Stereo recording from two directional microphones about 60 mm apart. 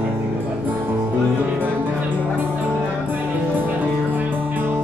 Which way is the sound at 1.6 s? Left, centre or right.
Right.